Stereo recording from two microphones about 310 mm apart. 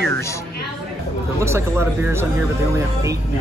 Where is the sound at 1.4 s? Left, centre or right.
Centre.